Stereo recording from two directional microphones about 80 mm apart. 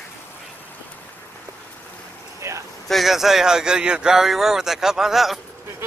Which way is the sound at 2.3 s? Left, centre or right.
Right.